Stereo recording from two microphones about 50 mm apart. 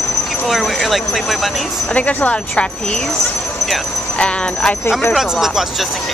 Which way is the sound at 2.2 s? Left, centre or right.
Left.